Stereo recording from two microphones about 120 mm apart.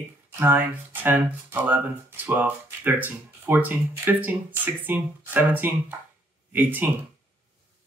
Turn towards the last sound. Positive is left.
turn(degrees=-15)  # may be behind; listen again after turning